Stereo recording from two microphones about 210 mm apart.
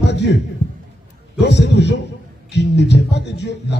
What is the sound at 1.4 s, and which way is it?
A man's voice, 55° left (ahead or behind).